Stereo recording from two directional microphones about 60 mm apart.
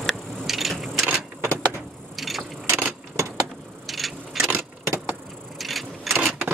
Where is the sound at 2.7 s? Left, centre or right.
Right.